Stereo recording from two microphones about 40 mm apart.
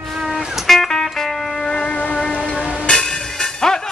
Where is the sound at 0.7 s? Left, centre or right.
Centre.